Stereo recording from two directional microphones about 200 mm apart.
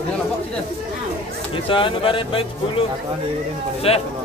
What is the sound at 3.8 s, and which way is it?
Speech, 30° left (ahead or behind).